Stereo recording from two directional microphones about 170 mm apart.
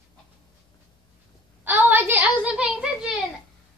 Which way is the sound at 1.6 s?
10° right (ahead or behind).